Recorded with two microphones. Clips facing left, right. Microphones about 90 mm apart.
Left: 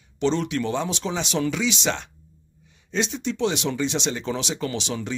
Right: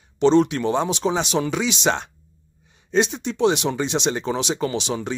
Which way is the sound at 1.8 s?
55° right (ahead or behind).